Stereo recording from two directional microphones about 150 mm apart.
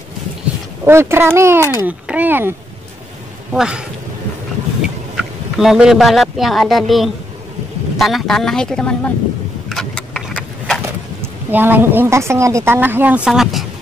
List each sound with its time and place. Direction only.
0.8 s a woman's voice: 15° right (ahead or behind)
3.5 s speech: 5° right (ahead or behind)
4.8 s speech: 5° right (ahead or behind)
9.7 s a sound: centre (ahead or behind)
11.5 s a woman's voice: 15° right (ahead or behind)